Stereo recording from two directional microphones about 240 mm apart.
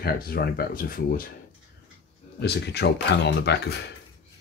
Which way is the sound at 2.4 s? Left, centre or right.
Left.